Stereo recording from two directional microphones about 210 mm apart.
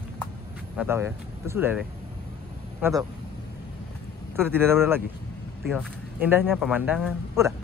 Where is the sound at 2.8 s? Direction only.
10° right (ahead or behind).